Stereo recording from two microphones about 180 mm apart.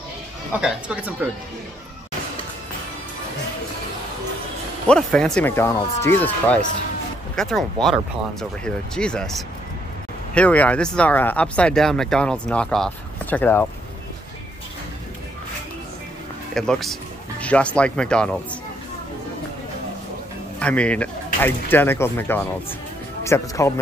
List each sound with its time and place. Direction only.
0.5 s speech: 5° right (ahead or behind)
4.8 s speech: 5° left (ahead or behind)
16.5 s speech: 5° left (ahead or behind)
20.5 s speech: 5° left (ahead or behind)